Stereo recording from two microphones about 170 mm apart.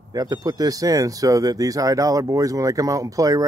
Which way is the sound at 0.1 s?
20° right (ahead or behind).